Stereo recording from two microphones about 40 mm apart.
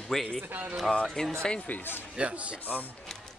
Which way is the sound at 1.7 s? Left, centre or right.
Left.